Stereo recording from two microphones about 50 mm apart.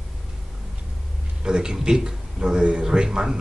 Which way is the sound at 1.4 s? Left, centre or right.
Centre.